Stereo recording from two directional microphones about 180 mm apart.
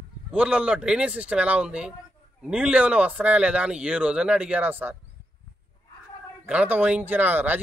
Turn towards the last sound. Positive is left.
turn(degrees=-10)  # may be behind; listen again after turning